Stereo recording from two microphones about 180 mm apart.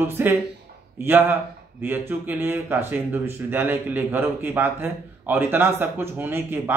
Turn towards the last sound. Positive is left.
turn(degrees=-10)  # may be behind; listen again after turning